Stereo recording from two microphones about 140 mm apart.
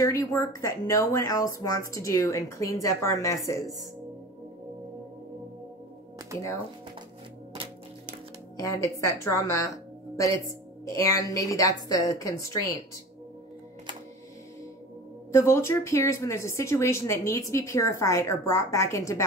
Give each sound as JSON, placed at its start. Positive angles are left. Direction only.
{"t": 0.0, "sound": "speech", "side_deg": 25}
{"t": 8.5, "sound": "a woman's voice", "side_deg": 20}
{"t": 15.3, "sound": "speech", "side_deg": 20}